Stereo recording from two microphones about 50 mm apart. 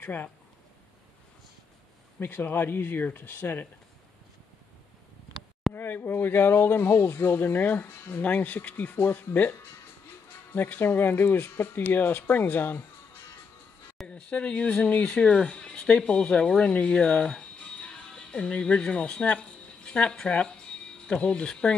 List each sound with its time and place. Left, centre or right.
0.0 s speech: left
2.1 s speech: left
5.7 s speech: left
14.0 s speech: left